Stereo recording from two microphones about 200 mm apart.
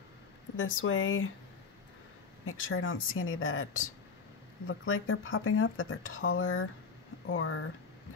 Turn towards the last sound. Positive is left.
turn(degrees=85)